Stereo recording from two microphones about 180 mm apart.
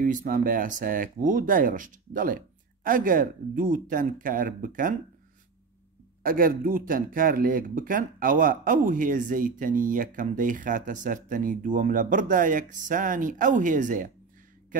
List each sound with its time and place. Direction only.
0.0 s speech: 45° right (ahead or behind)
6.2 s speech: 50° right (ahead or behind)